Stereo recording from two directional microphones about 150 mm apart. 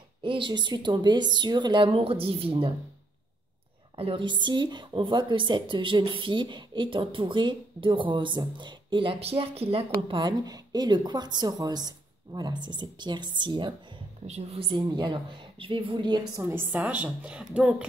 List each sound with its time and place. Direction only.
0.2 s speech: 35° right (ahead or behind)
3.9 s speech: 40° right (ahead or behind)
14.2 s speech: 45° right (ahead or behind)
16.4 s a woman's voice: 15° right (ahead or behind)